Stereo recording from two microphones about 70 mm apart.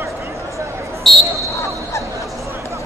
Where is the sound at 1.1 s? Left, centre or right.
Centre.